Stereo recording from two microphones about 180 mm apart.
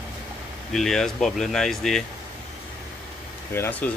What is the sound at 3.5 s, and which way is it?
Speech, 15° left (ahead or behind).